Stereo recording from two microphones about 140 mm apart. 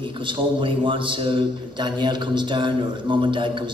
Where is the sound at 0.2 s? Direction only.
35° right (ahead or behind).